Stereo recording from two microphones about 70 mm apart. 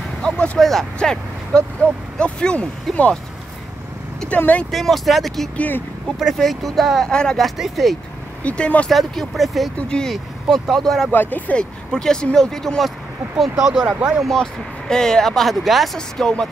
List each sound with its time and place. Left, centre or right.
0.2 s vehicle: centre
0.9 s speech: centre
4.4 s speech: left
4.6 s speech: centre
7.1 s speech: centre
7.4 s speech: centre
8.5 s speech: centre
8.9 s speech: centre
9.8 s speech: centre
11.1 s speech: left; by 16.4 s centre